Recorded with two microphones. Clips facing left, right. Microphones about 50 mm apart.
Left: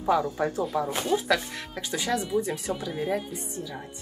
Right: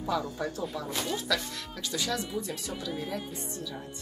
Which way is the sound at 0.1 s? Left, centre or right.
Left.